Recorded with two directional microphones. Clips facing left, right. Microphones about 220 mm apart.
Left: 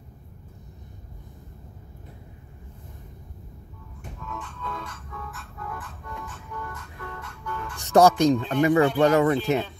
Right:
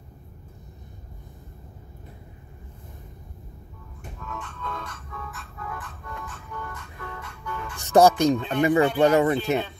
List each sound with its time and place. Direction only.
4.2 s music: 5° left (ahead or behind)